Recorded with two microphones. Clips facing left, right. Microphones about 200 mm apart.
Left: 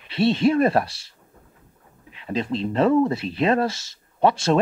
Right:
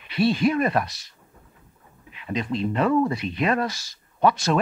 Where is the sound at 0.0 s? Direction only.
25° left (ahead or behind).